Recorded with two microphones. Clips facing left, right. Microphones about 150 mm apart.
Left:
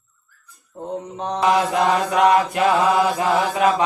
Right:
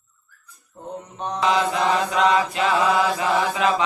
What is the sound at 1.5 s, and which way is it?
Mantra, 50° left (ahead or behind).